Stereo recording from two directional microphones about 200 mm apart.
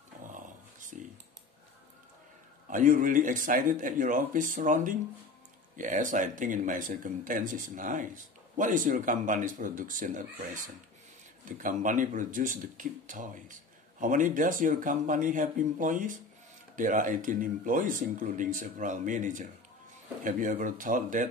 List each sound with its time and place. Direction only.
2.7 s speech: 40° right (ahead or behind)